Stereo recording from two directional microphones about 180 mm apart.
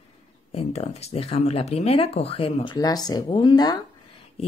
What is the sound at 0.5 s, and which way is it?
Speech, 35° left (ahead or behind).